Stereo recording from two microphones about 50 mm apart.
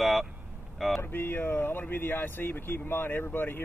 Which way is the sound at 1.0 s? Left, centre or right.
Left.